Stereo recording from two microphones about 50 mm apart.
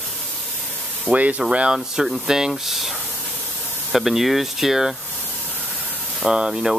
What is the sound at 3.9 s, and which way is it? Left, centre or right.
Speech, centre.